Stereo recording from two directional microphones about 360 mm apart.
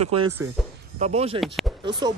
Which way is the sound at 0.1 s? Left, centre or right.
Centre.